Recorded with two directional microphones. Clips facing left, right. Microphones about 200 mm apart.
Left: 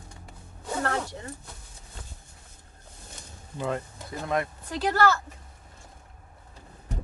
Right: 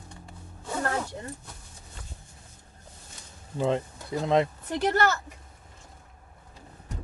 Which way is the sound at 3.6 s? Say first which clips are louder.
Right 4 dB; 25° right (ahead or behind).